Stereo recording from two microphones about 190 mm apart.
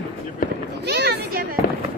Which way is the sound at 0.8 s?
60° right (ahead or behind).